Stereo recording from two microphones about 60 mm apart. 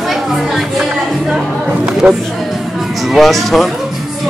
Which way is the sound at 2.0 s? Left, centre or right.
Centre.